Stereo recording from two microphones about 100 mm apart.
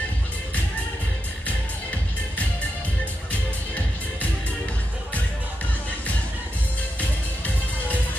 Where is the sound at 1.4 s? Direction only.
15° left (ahead or behind).